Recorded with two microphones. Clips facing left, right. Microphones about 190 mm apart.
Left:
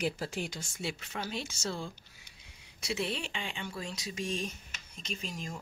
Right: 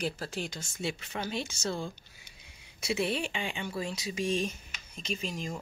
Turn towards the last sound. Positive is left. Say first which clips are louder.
# right 4 dB
turn(degrees=0)  # may be behind; listen again after turning